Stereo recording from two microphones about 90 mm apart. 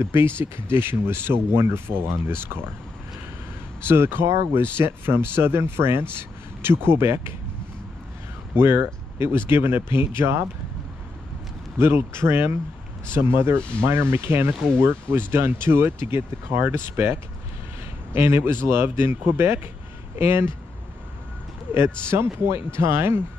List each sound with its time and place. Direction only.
0.0 s speech: 30° right (ahead or behind)
3.8 s speech: 25° right (ahead or behind)
8.5 s speech: 25° right (ahead or behind)
11.8 s speech: 25° right (ahead or behind)
13.6 s speech: 10° left (ahead or behind)
13.8 s speech: 25° right (ahead or behind)
22.1 s speech: 30° right (ahead or behind)